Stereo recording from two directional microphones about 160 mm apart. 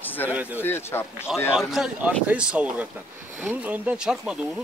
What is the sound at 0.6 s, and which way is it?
Speech, 15° left (ahead or behind).